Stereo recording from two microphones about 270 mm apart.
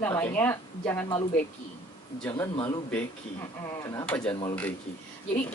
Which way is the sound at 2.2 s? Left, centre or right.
Centre.